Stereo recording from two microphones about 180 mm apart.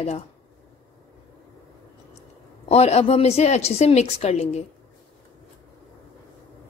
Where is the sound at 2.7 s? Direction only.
35° left (ahead or behind).